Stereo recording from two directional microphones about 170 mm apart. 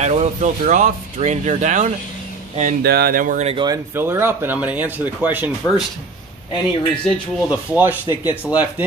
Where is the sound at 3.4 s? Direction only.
25° right (ahead or behind); by 5.5 s 10° right (ahead or behind).